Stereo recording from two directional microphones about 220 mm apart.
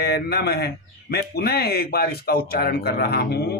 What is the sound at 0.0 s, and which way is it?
A man's voice, 45° left (ahead or behind).